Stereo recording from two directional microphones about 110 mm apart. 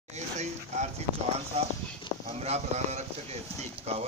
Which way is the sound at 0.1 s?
90° right.